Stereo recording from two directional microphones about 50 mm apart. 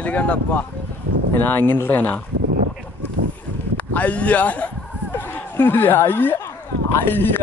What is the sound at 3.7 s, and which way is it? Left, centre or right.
Speech, left.